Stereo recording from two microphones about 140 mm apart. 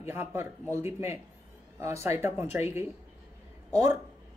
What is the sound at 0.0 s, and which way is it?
Speech, 15° right (ahead or behind).